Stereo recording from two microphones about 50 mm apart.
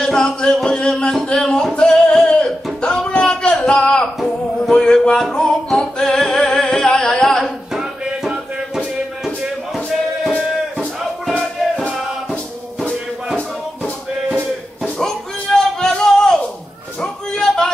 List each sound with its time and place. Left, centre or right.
0.0 s music: centre
7.7 s music: centre
15.0 s a sound: centre